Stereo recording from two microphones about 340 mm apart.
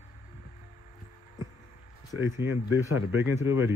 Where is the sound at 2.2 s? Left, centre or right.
Centre.